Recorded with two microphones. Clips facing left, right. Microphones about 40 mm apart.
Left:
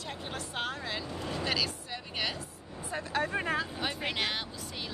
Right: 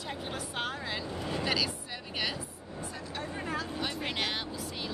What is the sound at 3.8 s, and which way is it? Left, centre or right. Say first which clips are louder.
Speech: left 1 dB; centre.